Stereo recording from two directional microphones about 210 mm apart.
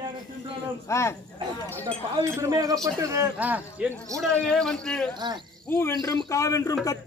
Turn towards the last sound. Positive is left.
turn(degrees=15)  # may be behind; listen again after turning